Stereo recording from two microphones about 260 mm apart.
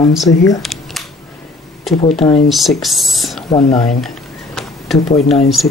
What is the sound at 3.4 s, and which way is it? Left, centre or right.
Speech, centre.